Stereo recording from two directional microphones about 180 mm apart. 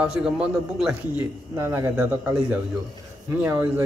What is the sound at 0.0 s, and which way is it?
A man's voice, 5° right (ahead or behind).